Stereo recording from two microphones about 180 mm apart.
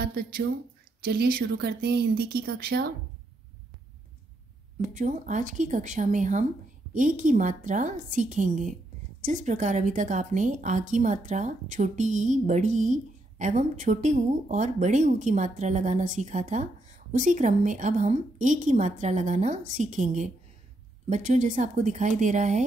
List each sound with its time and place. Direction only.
0.0 s speech: 60° right (ahead or behind)
4.9 s a woman's voice: 45° right (ahead or behind)